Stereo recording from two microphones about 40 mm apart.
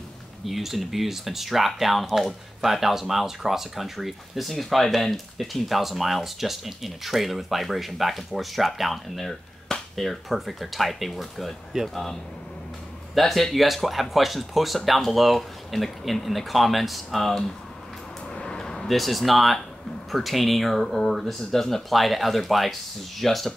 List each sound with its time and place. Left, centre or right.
0.5 s speech: centre
18.3 s a sound: centre
20.1 s speech: centre